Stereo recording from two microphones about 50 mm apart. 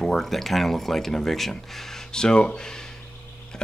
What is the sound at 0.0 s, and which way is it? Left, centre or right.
Speech, centre.